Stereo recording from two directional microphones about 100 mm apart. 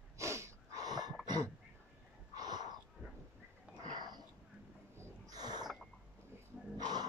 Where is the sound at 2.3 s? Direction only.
45° right (ahead or behind).